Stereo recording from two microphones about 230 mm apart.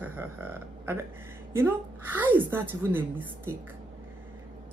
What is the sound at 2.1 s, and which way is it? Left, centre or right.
Speech, centre.